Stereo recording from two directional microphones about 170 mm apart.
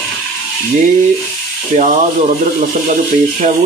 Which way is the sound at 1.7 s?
50° right (ahead or behind).